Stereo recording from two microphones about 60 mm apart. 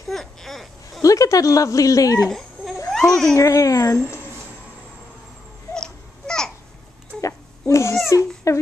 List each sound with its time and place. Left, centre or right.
0.1 s a sound: centre
1.0 s speech: left
2.2 s a sound: centre
3.1 s speech: centre
3.3 s a child's voice: left
5.8 s baby cry: centre
7.2 s baby cry: left
8.1 s speech: left